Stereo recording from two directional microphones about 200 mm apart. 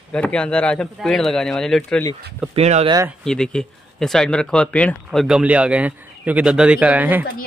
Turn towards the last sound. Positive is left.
turn(degrees=-10)  # may be behind; listen again after turning